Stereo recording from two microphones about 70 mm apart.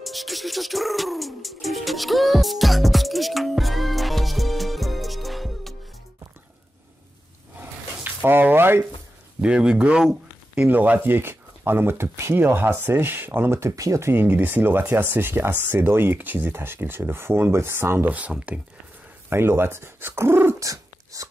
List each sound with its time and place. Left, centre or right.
0.0 s music: centre
8.0 s a sound: right
9.4 s speech: centre
10.6 s speech: right
12.4 s speech: right
18.1 s speech: centre
19.2 s speech: right
20.5 s a sound: right